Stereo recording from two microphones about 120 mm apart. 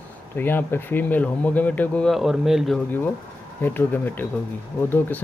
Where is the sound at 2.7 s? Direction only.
15° left (ahead or behind).